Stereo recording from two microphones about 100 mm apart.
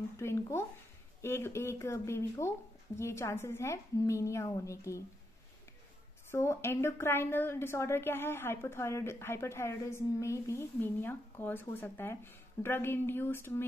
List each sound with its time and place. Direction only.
0.2 s a woman's voice: 25° left (ahead or behind)
6.3 s a woman's voice: 25° left (ahead or behind)